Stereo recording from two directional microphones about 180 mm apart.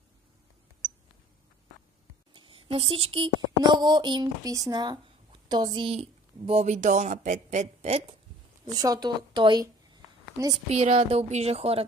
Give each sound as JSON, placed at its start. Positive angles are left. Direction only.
{"t": 2.3, "sound": "speech", "side_deg": -30}
{"t": 8.7, "sound": "a woman's voice", "side_deg": -20}
{"t": 10.7, "sound": "speech", "side_deg": -35}